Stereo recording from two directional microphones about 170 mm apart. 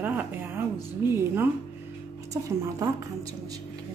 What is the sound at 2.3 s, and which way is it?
Speech, 20° right (ahead or behind).